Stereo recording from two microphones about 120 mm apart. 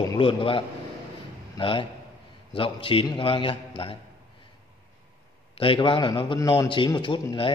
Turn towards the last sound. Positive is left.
turn(degrees=45)  # may be behind; listen again after turning